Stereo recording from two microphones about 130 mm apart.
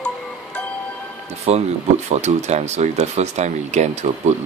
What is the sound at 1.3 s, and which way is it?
Speech, 55° right (ahead or behind).